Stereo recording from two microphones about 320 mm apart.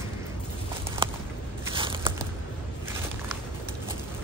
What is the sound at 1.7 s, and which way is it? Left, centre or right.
Biting, centre.